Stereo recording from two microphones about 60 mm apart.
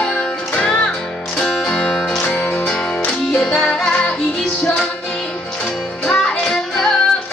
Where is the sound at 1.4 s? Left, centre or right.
Centre.